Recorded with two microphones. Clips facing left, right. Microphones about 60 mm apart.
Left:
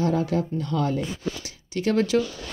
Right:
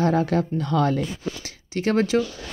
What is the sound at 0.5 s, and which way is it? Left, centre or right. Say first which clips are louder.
Speech: right 4 dB; right.